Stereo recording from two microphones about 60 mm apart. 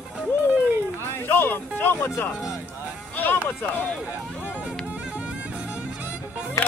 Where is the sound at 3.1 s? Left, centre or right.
Left.